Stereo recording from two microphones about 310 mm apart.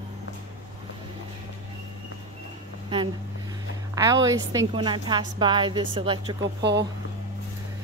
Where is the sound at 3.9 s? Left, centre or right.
Centre.